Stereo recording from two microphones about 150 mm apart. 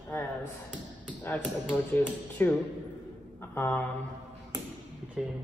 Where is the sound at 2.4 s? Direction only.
15° left (ahead or behind).